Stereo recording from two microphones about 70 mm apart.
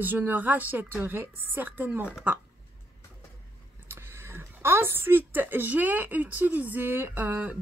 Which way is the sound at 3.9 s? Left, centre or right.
Right.